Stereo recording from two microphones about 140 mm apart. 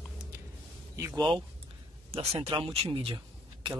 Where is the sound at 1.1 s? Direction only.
35° right (ahead or behind).